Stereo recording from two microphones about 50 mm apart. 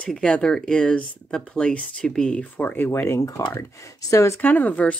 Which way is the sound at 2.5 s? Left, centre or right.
Left.